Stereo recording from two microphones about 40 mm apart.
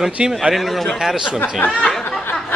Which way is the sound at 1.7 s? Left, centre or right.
Left.